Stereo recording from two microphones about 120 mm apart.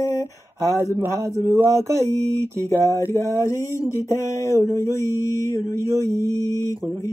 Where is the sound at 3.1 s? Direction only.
25° right (ahead or behind).